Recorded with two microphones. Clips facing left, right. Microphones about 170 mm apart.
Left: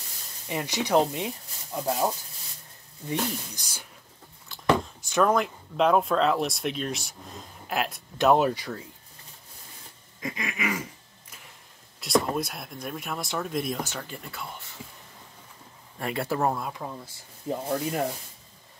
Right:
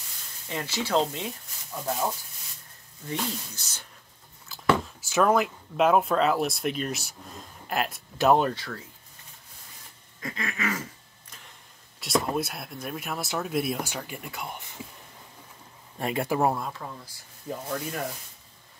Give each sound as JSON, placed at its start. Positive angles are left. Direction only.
{"t": 0.5, "sound": "speech", "side_deg": 15}
{"t": 3.1, "sound": "speech", "side_deg": 15}
{"t": 4.5, "sound": "a sound", "side_deg": 0}
{"t": 5.0, "sound": "speech", "side_deg": -5}
{"t": 10.2, "sound": "a sound", "side_deg": 15}
{"t": 12.0, "sound": "speech", "side_deg": 0}
{"t": 16.0, "sound": "speech", "side_deg": -20}
{"t": 16.7, "sound": "speech", "side_deg": 20}